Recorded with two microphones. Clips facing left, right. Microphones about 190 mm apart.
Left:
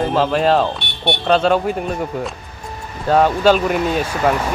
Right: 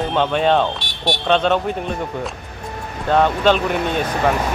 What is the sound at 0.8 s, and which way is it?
Music, 55° left (ahead or behind).